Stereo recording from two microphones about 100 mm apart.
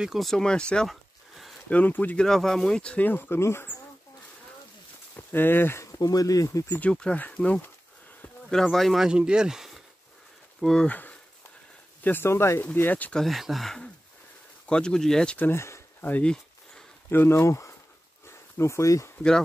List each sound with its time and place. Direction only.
0.0 s speech: centre (ahead or behind)
1.7 s speech: 15° left (ahead or behind)
2.2 s speech: 5° left (ahead or behind); by 3.7 s 25° left (ahead or behind)
5.1 s speech: 20° left (ahead or behind)
5.9 s speech: 40° left (ahead or behind)
6.8 s speech: 10° left (ahead or behind); by 9.7 s 5° right (ahead or behind)
10.6 s speech: 5° left (ahead or behind)
10.9 s speech: 15° left (ahead or behind)
13.2 s speech: centre (ahead or behind)
15.3 s a sound: 20° left (ahead or behind)
17.1 s speech: 25° left (ahead or behind)
18.2 s a sound: 30° left (ahead or behind)